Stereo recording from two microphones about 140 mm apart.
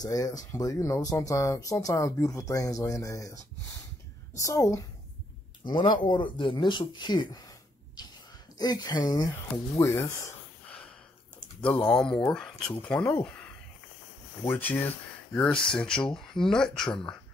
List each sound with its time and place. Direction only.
0.0 s speech: 25° left (ahead or behind)
5.7 s speech: 35° left (ahead or behind)
8.5 s speech: 30° left (ahead or behind)
11.6 s speech: 10° left (ahead or behind)
12.9 s speech: 30° left (ahead or behind)
13.2 s speech: 5° left (ahead or behind)